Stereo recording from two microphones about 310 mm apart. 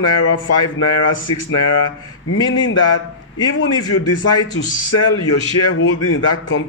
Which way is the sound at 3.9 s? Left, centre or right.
Left.